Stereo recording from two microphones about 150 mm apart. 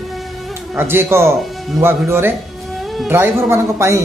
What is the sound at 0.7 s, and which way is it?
Speech, 15° right (ahead or behind).